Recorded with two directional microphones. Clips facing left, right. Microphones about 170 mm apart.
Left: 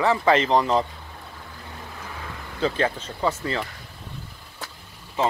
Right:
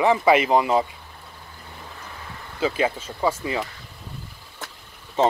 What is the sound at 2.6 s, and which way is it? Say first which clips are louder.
Speech: right 1 dB; 10° right (ahead or behind).